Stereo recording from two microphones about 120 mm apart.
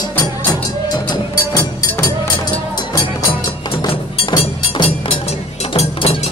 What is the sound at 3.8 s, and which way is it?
Music, 45° left (ahead or behind).